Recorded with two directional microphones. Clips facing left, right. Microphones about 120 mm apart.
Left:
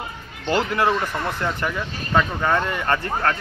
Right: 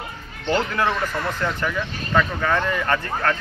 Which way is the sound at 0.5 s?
10° left (ahead or behind).